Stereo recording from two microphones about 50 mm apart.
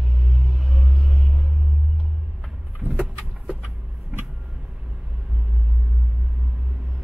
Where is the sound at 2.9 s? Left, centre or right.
Centre.